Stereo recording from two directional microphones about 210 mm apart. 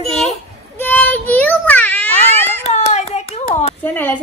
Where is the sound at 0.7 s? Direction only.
10° left (ahead or behind).